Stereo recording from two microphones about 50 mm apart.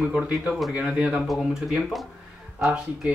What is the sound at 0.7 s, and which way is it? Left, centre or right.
Speech, right.